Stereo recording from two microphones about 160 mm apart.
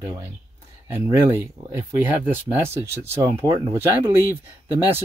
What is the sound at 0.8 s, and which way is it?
Speech, 15° right (ahead or behind).